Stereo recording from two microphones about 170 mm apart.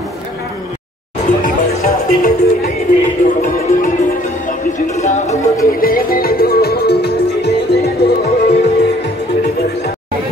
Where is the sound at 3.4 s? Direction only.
55° left (ahead or behind).